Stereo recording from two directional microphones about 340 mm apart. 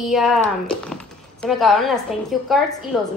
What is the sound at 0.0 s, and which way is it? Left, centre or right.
Speech, centre.